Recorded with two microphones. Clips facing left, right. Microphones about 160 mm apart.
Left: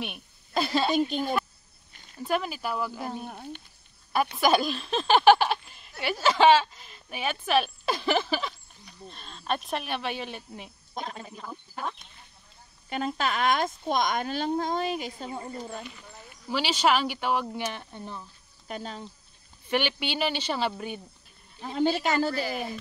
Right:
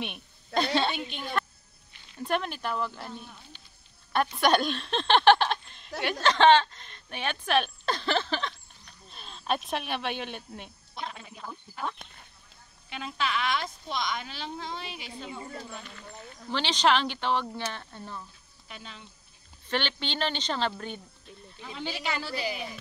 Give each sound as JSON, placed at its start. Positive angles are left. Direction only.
{"t": 0.6, "sound": "speech", "side_deg": 5}
{"t": 0.9, "sound": "a woman's voice", "side_deg": 40}
{"t": 2.1, "sound": "speech", "side_deg": 5}
{"t": 3.1, "sound": "speech", "side_deg": 50}
{"t": 4.1, "sound": "speech", "side_deg": 5}
{"t": 11.0, "sound": "a sound", "side_deg": 40}
{"t": 12.9, "sound": "speech", "side_deg": 45}
{"t": 16.0, "sound": "speech", "side_deg": 10}
{"t": 18.7, "sound": "speech", "side_deg": 40}
{"t": 19.7, "sound": "speech", "side_deg": 10}
{"t": 21.5, "sound": "speech", "side_deg": 40}